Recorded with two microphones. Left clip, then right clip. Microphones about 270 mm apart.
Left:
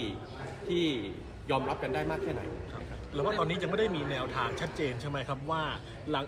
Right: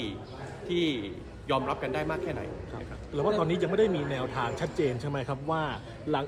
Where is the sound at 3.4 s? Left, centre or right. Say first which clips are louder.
Right 4 dB; right.